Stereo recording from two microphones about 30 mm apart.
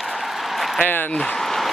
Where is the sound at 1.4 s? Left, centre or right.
Centre.